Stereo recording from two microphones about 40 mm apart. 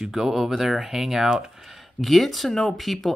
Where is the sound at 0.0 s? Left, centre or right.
Centre.